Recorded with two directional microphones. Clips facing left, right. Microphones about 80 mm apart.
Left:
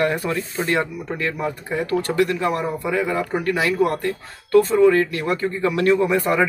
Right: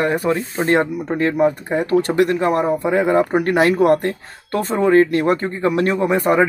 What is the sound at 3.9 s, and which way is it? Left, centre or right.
Speech, right.